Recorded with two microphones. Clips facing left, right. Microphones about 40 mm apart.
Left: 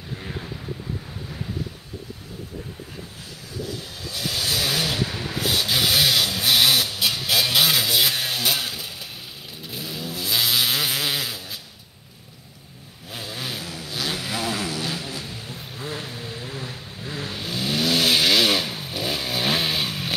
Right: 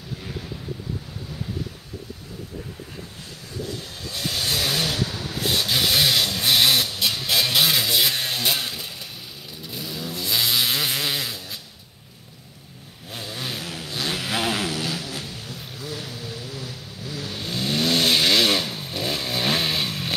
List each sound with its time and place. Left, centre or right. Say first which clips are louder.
3.5 s vehicle: even; centre
13.1 s vehicle: even; centre
14.3 s vehicle: right 5 dB; right
15.8 s vehicle: left 2 dB; left
17.4 s vehicle: right 1 dB; centre